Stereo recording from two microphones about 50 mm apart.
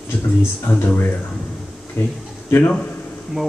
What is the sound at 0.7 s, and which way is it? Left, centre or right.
Speech, left.